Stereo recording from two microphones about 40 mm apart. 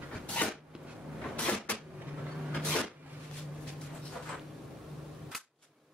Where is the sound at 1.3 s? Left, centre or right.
Left.